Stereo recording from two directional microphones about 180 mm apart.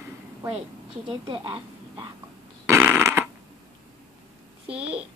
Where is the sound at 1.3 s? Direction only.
25° right (ahead or behind).